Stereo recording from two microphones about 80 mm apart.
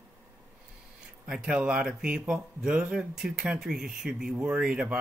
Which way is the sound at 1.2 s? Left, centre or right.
Centre.